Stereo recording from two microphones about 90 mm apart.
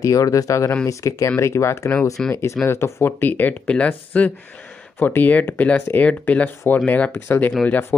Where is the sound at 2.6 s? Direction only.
25° left (ahead or behind).